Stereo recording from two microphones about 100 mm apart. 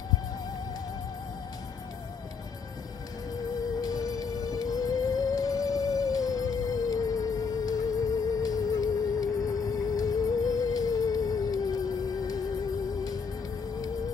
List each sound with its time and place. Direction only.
3.8 s music: 35° left (ahead or behind)